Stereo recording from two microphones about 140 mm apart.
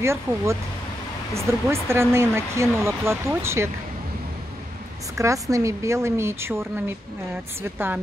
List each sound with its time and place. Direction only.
0.0 s speech: 20° right (ahead or behind)
5.1 s speech: 20° right (ahead or behind)